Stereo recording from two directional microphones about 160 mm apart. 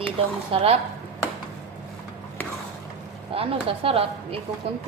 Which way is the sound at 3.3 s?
35° right (ahead or behind).